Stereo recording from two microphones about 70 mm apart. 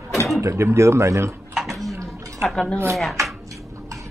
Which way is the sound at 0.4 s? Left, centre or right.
Right.